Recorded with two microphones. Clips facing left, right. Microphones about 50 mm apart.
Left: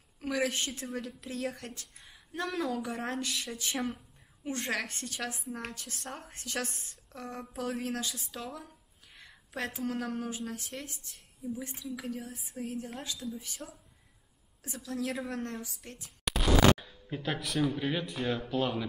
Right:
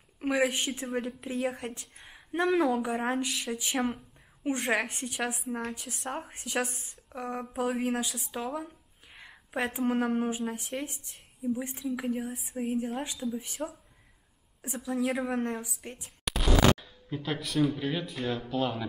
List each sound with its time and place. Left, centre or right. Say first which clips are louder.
0.2 s a woman's voice: right 4 dB; right
3.3 s a woman's voice: right 3 dB; centre
4.5 s a woman's voice: right 5 dB; centre
8.3 s a sound: right 7 dB; right
9.5 s a woman's voice: right 6 dB; right
14.6 s a woman's voice: right 5 dB; right
16.3 s speech: even; centre